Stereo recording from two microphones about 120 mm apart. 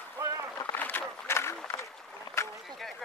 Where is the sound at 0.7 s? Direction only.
15° left (ahead or behind).